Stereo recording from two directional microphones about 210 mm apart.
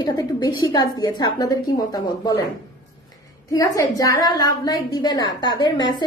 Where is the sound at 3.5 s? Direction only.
15° left (ahead or behind).